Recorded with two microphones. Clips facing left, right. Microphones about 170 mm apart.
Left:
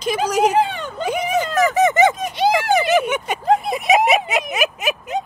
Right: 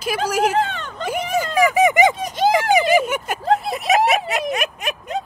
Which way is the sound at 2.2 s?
45° right (ahead or behind).